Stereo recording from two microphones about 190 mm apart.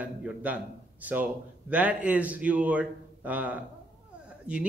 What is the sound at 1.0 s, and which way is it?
Speech, 10° right (ahead or behind).